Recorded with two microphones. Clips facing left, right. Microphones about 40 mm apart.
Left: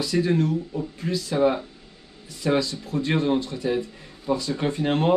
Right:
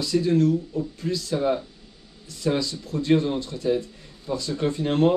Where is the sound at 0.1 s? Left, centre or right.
Left.